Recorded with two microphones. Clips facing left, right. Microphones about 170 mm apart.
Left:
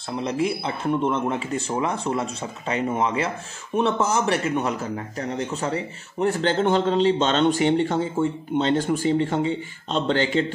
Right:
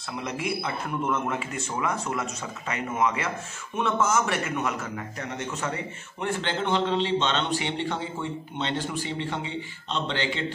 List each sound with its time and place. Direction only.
0.2 s a man's voice: 30° left (ahead or behind)